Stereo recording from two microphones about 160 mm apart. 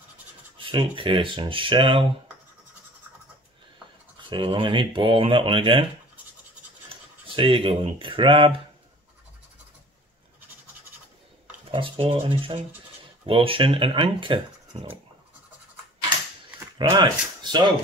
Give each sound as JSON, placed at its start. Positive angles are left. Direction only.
{"t": 0.6, "sound": "speech", "side_deg": -35}
{"t": 4.2, "sound": "speech", "side_deg": -30}
{"t": 6.9, "sound": "speech", "side_deg": -35}
{"t": 11.7, "sound": "speech", "side_deg": -35}
{"t": 16.7, "sound": "speech", "side_deg": -30}